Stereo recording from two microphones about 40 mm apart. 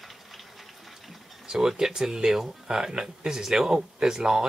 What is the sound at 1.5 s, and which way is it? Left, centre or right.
Speech, centre.